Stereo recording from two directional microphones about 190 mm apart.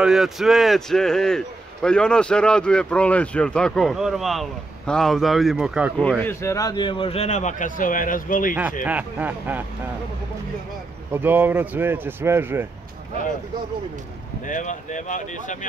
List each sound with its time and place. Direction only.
0.0 s a man's voice: centre (ahead or behind); by 8.5 s 45° left (ahead or behind)
8.8 s speech: 10° right (ahead or behind)
11.1 s speech: 10° right (ahead or behind)
14.4 s speech: 40° left (ahead or behind)